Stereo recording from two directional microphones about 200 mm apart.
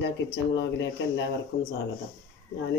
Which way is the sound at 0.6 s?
60° left (ahead or behind).